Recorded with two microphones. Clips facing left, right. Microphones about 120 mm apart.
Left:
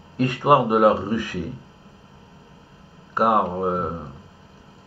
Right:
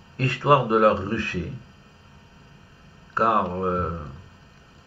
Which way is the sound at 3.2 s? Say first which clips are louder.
Left 2 dB; 15° left (ahead or behind).